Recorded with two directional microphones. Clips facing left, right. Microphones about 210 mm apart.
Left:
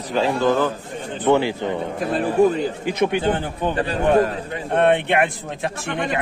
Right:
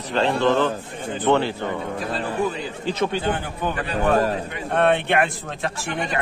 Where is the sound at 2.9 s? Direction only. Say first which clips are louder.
Left 2 dB; 15° left (ahead or behind).